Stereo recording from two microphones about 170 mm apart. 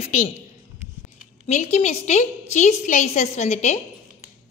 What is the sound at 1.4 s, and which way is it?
A woman's voice, 40° left (ahead or behind).